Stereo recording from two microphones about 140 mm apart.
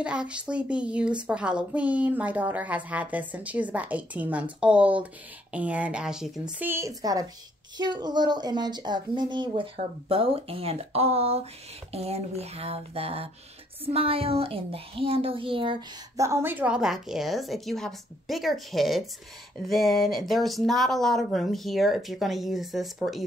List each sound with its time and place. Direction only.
0.0 s a woman's voice: 5° right (ahead or behind)
6.6 s a woman's voice: 20° right (ahead or behind); by 15.8 s 40° right (ahead or behind)
16.2 s speech: 20° right (ahead or behind); by 23.2 s centre (ahead or behind)